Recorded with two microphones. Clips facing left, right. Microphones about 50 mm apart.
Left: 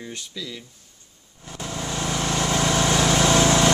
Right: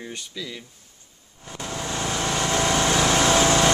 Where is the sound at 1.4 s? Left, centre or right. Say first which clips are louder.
Even; centre.